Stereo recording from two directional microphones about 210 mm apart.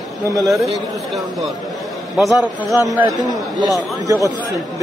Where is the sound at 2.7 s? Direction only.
15° right (ahead or behind).